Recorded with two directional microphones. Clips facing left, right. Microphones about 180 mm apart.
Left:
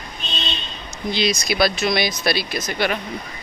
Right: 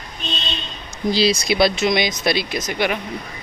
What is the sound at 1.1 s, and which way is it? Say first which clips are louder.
Speech: right 4 dB; 30° right (ahead or behind).